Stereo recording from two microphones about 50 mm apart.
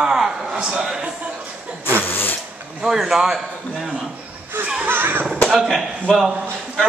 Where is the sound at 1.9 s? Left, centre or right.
Left.